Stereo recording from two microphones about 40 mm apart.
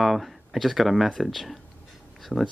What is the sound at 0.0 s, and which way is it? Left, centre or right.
Speech, centre.